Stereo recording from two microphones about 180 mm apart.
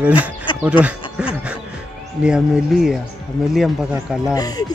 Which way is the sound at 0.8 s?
10° right (ahead or behind).